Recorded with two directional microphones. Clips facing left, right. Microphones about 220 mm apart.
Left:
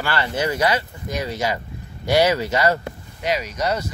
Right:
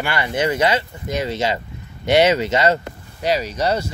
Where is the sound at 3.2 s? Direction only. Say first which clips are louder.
Right 3 dB; 30° right (ahead or behind).